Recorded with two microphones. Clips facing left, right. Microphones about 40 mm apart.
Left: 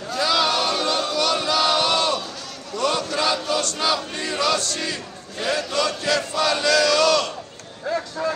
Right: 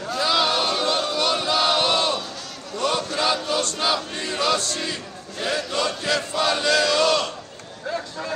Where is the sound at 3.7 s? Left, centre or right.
Centre.